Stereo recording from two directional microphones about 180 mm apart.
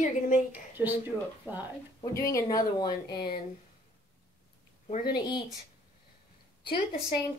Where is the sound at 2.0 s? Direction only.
15° left (ahead or behind).